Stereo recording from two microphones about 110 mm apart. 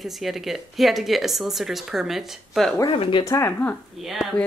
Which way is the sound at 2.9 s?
55° left (ahead or behind).